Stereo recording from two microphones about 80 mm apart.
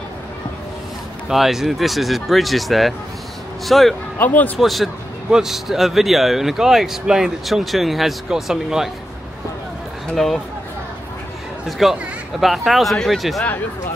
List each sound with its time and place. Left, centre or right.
1.3 s speech: centre
4.2 s speech: left
4.6 s speech: centre
10.1 s speech: centre
11.8 s speech: centre